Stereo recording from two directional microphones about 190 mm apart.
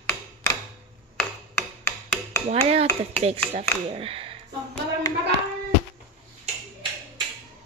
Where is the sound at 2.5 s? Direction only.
35° right (ahead or behind).